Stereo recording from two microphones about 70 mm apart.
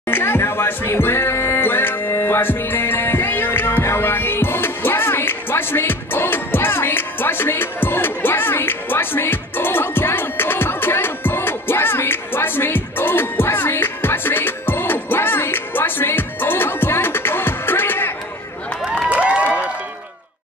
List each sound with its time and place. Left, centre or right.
0.1 s music: left
19.0 s crowd: centre